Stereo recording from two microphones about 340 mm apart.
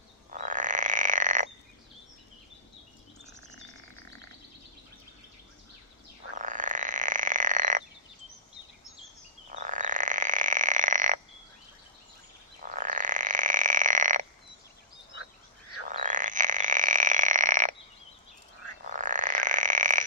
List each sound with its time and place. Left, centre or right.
0.3 s frog: right
6.3 s frog: right
9.5 s frog: right
12.6 s frog: right
15.9 s frog: right
18.9 s frog: right